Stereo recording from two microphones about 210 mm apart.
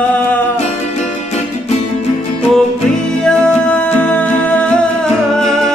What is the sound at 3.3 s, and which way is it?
Music, 5° left (ahead or behind).